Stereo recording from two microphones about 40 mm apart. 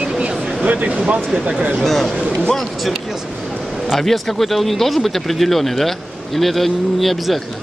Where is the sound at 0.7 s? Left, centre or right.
Right.